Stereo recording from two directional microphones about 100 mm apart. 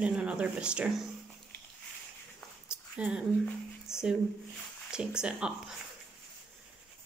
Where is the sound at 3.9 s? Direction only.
5° right (ahead or behind).